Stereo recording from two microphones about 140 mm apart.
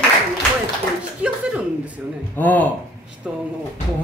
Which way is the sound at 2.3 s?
10° left (ahead or behind).